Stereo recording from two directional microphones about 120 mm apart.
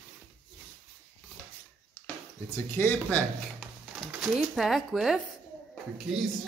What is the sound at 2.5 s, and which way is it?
Speech, 20° left (ahead or behind).